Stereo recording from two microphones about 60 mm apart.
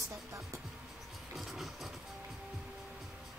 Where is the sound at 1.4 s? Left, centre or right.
Centre.